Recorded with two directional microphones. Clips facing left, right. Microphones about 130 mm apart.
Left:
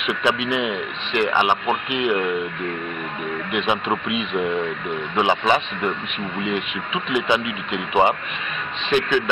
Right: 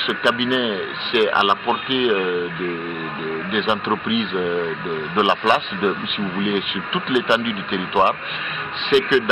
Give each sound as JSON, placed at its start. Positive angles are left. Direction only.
{"t": 0.0, "sound": "speech", "side_deg": 0}